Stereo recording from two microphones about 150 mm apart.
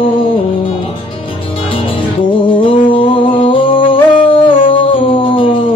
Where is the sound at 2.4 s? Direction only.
35° left (ahead or behind).